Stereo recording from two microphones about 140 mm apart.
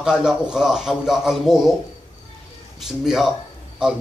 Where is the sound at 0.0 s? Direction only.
5° right (ahead or behind).